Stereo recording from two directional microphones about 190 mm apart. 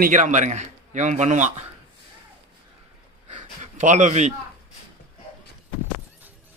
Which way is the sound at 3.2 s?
40° right (ahead or behind).